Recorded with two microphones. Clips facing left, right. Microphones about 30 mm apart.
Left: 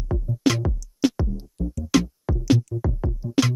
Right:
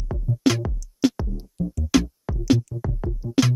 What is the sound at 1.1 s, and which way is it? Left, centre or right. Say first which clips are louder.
Music: left 2 dB; centre.